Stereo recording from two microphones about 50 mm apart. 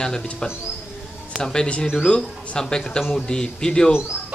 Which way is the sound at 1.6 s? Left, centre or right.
Left.